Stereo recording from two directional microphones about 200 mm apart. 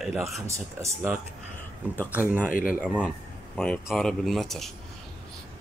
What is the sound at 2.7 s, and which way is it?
Speech, 5° right (ahead or behind).